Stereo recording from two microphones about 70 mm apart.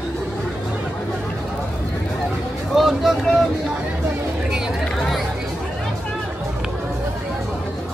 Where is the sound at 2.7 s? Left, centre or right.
Centre.